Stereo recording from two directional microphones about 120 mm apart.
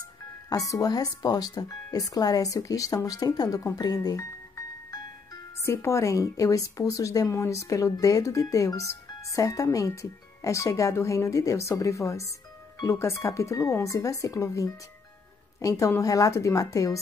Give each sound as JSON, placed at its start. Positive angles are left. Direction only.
{"t": 0.5, "sound": "speech", "side_deg": 30}